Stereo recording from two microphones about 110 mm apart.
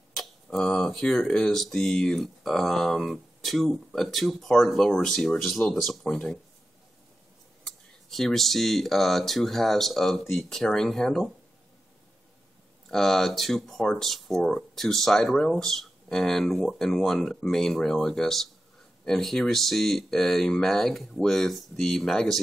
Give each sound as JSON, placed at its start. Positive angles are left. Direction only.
{"t": 0.1, "sound": "speech", "side_deg": 5}
{"t": 8.1, "sound": "speech", "side_deg": 0}
{"t": 12.8, "sound": "speech", "side_deg": 5}